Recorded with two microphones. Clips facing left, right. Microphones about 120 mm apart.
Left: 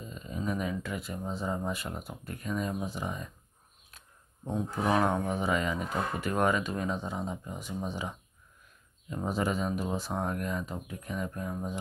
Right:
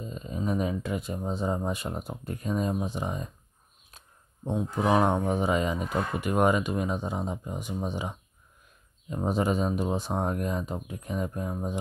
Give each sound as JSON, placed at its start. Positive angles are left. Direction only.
{"t": 0.0, "sound": "speech", "side_deg": -25}
{"t": 3.9, "sound": "a sound", "side_deg": -25}
{"t": 4.5, "sound": "speech", "side_deg": -20}